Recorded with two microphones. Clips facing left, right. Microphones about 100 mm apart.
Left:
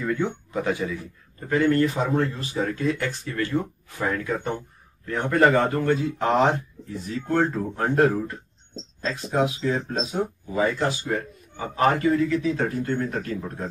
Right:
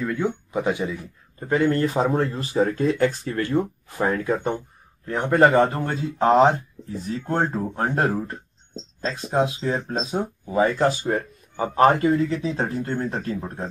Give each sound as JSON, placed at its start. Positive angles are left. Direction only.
{"t": 0.0, "sound": "speech", "side_deg": 0}
{"t": 0.5, "sound": "speech", "side_deg": -20}
{"t": 7.5, "sound": "speech", "side_deg": -30}